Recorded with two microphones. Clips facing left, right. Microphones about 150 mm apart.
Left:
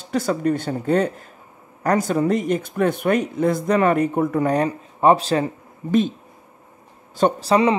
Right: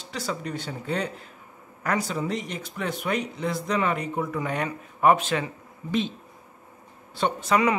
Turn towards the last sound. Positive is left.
turn(degrees=30)  # may be behind; listen again after turning